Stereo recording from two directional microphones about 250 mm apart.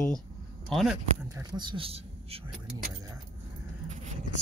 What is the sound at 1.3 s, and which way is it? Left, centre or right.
Speech, centre.